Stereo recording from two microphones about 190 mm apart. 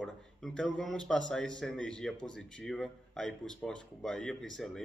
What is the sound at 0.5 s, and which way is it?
Speech, centre (ahead or behind).